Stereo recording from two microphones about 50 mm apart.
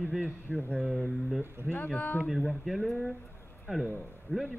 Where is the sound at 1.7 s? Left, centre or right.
Left.